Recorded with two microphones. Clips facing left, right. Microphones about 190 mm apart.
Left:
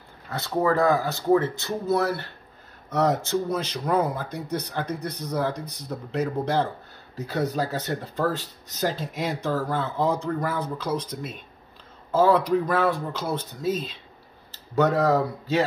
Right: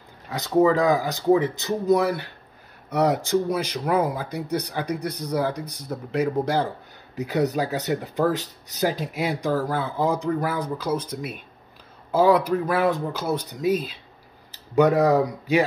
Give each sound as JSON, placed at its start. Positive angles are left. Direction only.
{"t": 0.3, "sound": "speech", "side_deg": -15}